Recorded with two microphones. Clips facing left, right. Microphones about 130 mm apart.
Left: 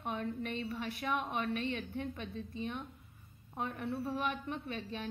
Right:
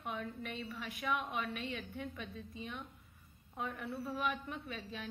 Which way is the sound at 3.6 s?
35° left (ahead or behind).